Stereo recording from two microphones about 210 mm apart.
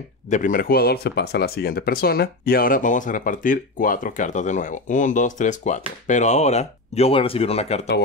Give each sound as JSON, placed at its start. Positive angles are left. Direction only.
{"t": 0.3, "sound": "speech", "side_deg": 40}